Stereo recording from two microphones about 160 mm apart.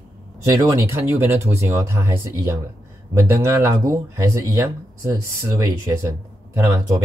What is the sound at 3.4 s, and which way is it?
Speech, 20° right (ahead or behind).